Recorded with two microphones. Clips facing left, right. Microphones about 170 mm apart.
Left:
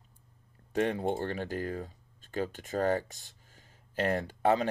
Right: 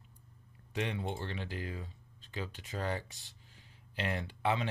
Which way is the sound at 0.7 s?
45° left (ahead or behind).